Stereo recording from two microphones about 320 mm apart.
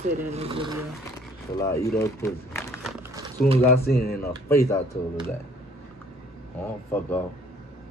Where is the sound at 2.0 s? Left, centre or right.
Centre.